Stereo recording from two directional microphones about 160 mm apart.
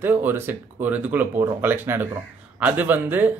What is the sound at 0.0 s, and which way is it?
Speech, 15° right (ahead or behind).